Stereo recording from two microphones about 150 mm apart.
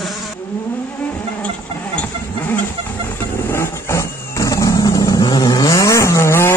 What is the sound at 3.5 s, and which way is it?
Vehicle, 20° left (ahead or behind).